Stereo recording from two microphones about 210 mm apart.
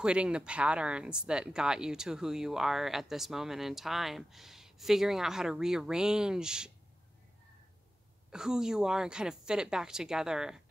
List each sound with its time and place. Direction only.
0.0 s speech: 5° right (ahead or behind)
8.3 s speech: 5° right (ahead or behind)